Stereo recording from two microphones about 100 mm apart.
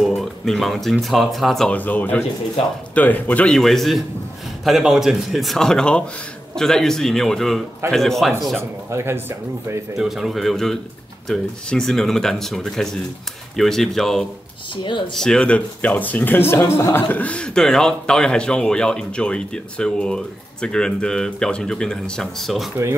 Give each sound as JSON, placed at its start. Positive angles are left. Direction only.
{"t": 0.0, "sound": "speech", "side_deg": 5}
{"t": 1.7, "sound": "a man's voice", "side_deg": 15}
{"t": 3.5, "sound": "speech", "side_deg": 0}
{"t": 8.5, "sound": "speech", "side_deg": -25}
{"t": 9.9, "sound": "speech", "side_deg": -5}
{"t": 14.8, "sound": "speech", "side_deg": 55}
{"t": 15.1, "sound": "a man's voice", "side_deg": 5}